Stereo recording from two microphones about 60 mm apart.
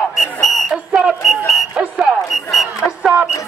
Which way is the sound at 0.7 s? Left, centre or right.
Centre.